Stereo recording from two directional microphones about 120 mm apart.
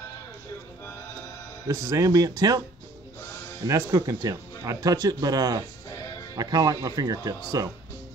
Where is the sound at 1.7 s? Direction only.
25° right (ahead or behind).